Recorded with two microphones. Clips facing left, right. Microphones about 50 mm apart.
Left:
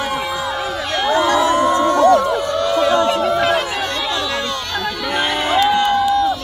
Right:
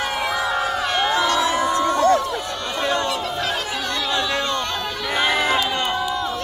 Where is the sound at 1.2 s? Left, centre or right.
Left.